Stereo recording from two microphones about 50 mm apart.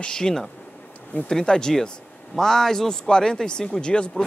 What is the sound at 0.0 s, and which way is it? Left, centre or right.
Speech, centre.